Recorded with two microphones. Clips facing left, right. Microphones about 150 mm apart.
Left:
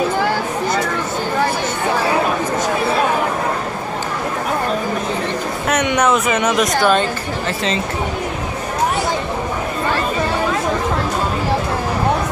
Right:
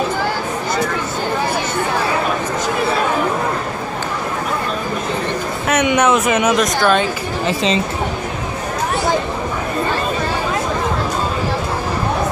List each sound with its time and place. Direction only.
5.7 s speech: 5° right (ahead or behind)
7.4 s speech: 20° right (ahead or behind)